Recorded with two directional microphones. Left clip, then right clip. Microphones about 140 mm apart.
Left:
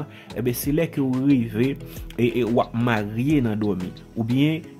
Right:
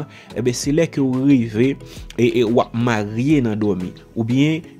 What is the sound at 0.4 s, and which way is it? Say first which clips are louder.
Speech: right 5 dB; 30° right (ahead or behind).